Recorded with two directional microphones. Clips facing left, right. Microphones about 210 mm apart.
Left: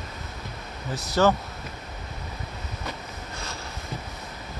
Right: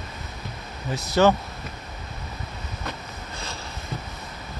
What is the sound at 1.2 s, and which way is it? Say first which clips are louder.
Speech: right 2 dB; 20° right (ahead or behind).